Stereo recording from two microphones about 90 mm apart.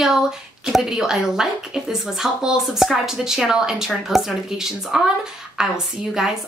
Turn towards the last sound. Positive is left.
turn(degrees=-5)  # may be behind; listen again after turning